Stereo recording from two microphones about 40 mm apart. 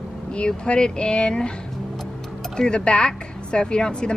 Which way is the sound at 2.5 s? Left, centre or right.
Left.